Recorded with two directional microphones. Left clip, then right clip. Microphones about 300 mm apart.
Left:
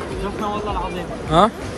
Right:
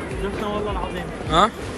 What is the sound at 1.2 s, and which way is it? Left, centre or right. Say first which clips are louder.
Speech: left 2 dB; centre.